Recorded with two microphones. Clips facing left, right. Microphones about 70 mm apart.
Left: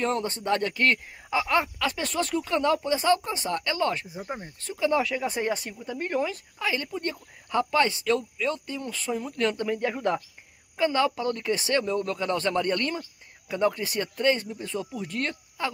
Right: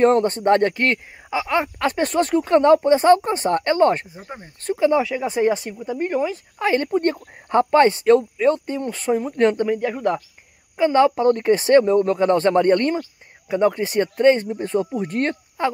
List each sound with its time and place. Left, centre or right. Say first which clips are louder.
0.0 s speech: right 12 dB; right
1.3 s speech: right 3 dB; centre
1.8 s speech: right 8 dB; right
4.8 s speech: right 6 dB; centre
6.6 s speech: right 10 dB; right
9.7 s speech: right 5 dB; centre
10.9 s speech: right 11 dB; right